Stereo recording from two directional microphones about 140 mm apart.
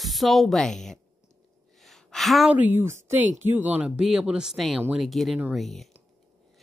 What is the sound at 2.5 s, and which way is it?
Speech, 15° right (ahead or behind).